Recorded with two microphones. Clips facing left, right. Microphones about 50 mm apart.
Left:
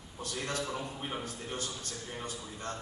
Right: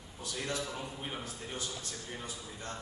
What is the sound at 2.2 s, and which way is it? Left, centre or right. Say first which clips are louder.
Speech: left 3 dB; left.